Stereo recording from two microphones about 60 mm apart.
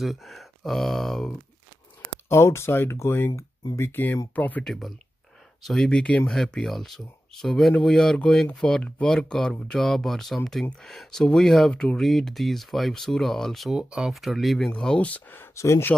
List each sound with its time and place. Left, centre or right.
0.0 s speech: centre
2.2 s speech: left
4.6 s speech: centre
5.9 s speech: centre
12.0 s speech: centre
13.7 s speech: centre
15.0 s speech: left
15.5 s speech: left